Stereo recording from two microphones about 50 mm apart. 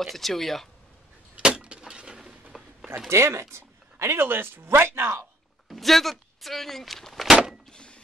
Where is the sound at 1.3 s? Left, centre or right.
Centre.